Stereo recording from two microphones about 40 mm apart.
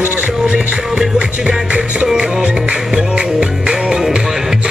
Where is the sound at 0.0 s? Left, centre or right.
Right.